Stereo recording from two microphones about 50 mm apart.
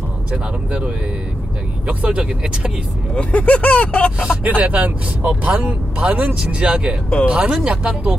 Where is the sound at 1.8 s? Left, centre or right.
Right.